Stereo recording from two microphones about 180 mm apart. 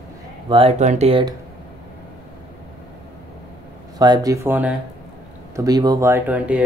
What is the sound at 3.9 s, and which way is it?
Speech, 20° right (ahead or behind).